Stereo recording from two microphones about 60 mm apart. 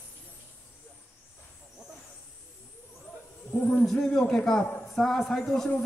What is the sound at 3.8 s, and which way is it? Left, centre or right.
A man's voice, centre.